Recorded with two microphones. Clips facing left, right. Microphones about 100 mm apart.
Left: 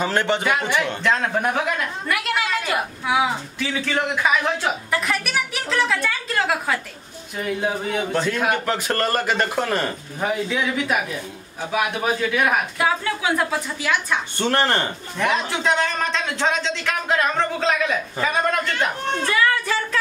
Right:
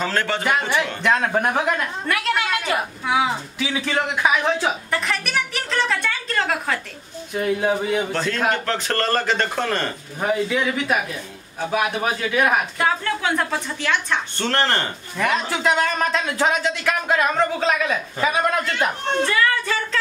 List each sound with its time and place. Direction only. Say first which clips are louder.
0.0 s a man's voice: left 2 dB; 20° left (ahead or behind)
1.0 s a man's voice: right 3 dB; 10° right (ahead or behind)
2.0 s speech: right 1 dB; centre (ahead or behind)
8.1 s a man's voice: left 1 dB; 10° left (ahead or behind)
15.1 s a man's voice: even; centre (ahead or behind)
19.3 s speech: even; 10° left (ahead or behind)